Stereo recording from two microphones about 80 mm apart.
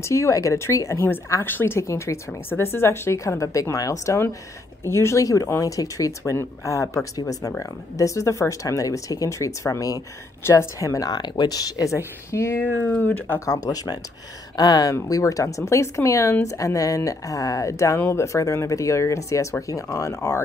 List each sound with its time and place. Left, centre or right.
0.0 s a woman's voice: left
1.4 s a woman's voice: left
7.2 s speech: left
10.4 s speech: left
12.6 s speech: left
13.5 s a woman's voice: left